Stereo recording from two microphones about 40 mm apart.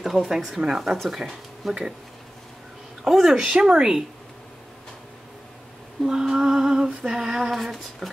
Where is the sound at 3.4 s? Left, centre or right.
Centre.